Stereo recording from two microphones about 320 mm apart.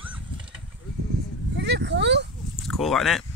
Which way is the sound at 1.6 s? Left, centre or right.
Right.